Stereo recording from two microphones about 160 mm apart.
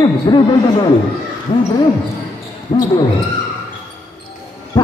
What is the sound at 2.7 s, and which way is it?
Speech, 40° left (ahead or behind).